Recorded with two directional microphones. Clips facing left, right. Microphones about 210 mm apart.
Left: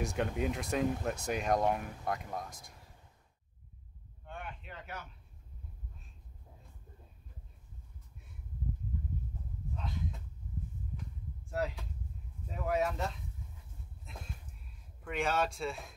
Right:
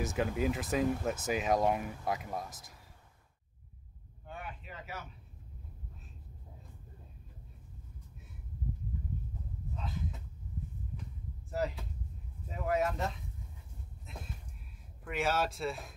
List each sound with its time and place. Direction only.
0.0 s speech: centre (ahead or behind)
4.3 s a sound: 5° right (ahead or behind)
9.8 s a sound: centre (ahead or behind)
11.5 s speech: centre (ahead or behind)
14.1 s music: centre (ahead or behind)
15.0 s speech: 5° right (ahead or behind)